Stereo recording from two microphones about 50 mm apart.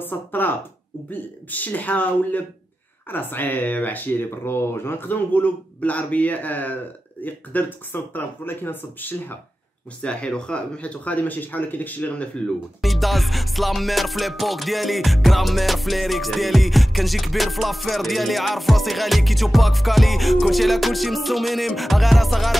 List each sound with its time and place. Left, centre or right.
0.0 s speech: left
3.1 s speech: left
10.0 s speech: centre; by 12.1 s left
12.8 s music: centre